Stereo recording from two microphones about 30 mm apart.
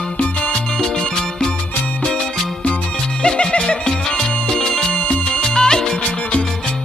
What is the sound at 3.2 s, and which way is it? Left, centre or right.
Music, left.